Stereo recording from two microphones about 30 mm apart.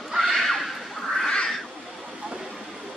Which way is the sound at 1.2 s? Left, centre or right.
Left.